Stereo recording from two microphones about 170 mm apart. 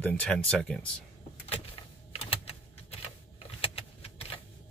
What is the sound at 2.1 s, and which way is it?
Typing, 35° left (ahead or behind).